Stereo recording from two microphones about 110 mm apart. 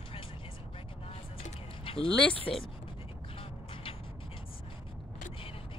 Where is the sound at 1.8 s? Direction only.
55° left (ahead or behind).